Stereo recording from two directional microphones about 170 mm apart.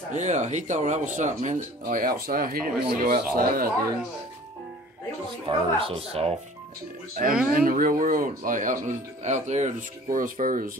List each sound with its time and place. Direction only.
0.1 s speech: 45° right (ahead or behind); by 3.7 s 60° right (ahead or behind)
5.5 s speech: 30° right (ahead or behind)
7.2 s speech: 50° right (ahead or behind)